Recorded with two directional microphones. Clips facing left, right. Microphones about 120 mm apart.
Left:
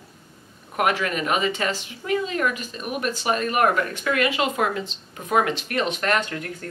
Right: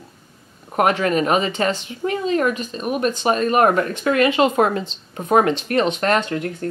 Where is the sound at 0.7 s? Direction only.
35° right (ahead or behind).